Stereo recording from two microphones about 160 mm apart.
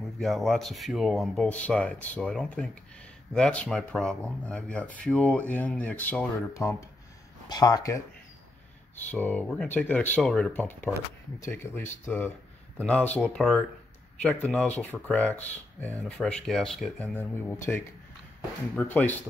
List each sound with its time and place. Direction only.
0.0 s speech: centre (ahead or behind); by 8.0 s 20° left (ahead or behind)
8.9 s speech: 10° left (ahead or behind)
17.1 s speech: 15° left (ahead or behind)